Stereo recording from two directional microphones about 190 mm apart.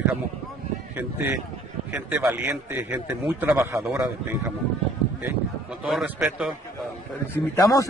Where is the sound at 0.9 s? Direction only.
10° right (ahead or behind).